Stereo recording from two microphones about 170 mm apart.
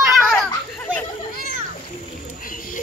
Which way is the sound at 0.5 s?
10° left (ahead or behind).